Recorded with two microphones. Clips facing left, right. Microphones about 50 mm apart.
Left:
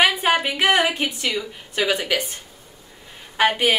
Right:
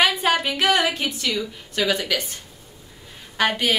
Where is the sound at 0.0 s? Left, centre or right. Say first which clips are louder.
Left 1 dB; centre.